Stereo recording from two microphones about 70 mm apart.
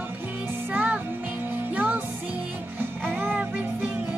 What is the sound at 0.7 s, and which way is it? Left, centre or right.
Music, right.